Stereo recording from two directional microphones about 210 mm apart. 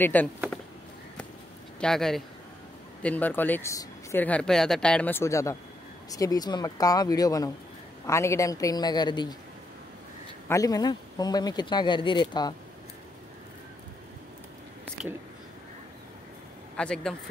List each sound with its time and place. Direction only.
0.0 s speech: 10° left (ahead or behind)
1.8 s speech: centre (ahead or behind); by 9.3 s 20° left (ahead or behind)
10.5 s speech: 15° left (ahead or behind)
16.7 s speech: 5° left (ahead or behind)